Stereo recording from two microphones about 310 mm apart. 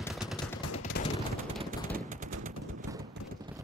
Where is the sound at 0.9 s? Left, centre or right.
Left.